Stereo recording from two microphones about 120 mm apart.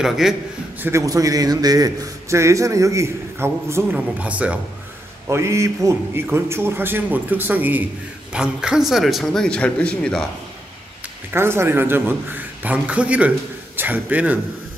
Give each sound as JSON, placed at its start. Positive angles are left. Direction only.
{"t": 0.0, "sound": "speech", "side_deg": -5}
{"t": 0.7, "sound": "a man's voice", "side_deg": -20}
{"t": 1.0, "sound": "a man's voice", "side_deg": -30}
{"t": 5.3, "sound": "a man's voice", "side_deg": -25}
{"t": 11.3, "sound": "a man's voice", "side_deg": -20}